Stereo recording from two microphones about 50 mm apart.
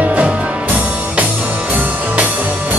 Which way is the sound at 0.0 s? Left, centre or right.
Right.